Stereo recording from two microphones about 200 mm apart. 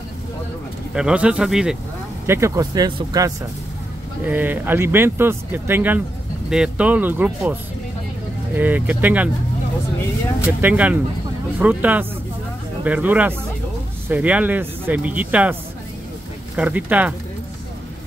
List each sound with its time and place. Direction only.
0.9 s speech: 5° right (ahead or behind)
2.2 s speech: 15° right (ahead or behind)
8.5 s speech: 10° right (ahead or behind)
10.4 s speech: 10° right (ahead or behind)
16.5 s speech: 5° right (ahead or behind)